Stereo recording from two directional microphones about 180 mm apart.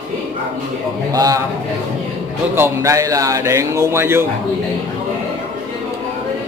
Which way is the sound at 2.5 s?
15° right (ahead or behind).